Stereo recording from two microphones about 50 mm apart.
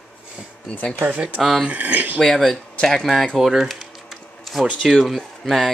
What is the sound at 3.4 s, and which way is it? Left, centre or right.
Speech, centre.